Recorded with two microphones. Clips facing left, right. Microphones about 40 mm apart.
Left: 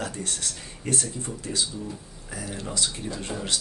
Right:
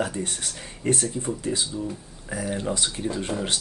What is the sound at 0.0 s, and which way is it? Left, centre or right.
Speech, right.